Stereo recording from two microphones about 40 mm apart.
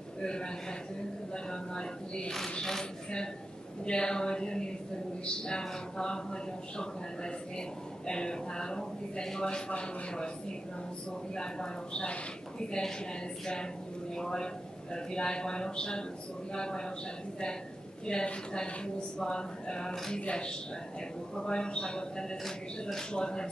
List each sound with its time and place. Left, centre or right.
0.2 s a man's voice: left
11.9 s a man's voice: left
14.1 s a man's voice: centre
18.0 s a man's voice: left
22.4 s speech: centre
23.1 s a man's voice: centre